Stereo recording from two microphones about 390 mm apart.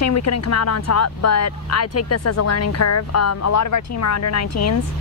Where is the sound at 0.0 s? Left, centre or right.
Left.